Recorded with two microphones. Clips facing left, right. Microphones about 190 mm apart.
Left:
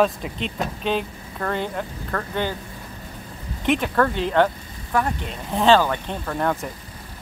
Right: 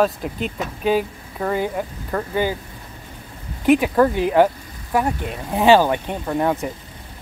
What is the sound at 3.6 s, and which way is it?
Speech, 10° right (ahead or behind).